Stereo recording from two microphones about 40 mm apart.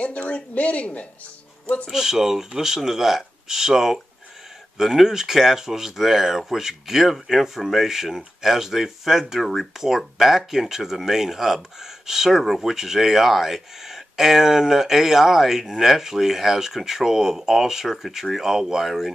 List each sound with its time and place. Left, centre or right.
0.0 s speech: left
1.9 s speech: centre